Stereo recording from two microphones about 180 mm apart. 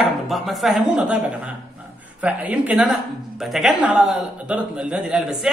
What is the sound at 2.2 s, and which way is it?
A man's voice, 10° right (ahead or behind).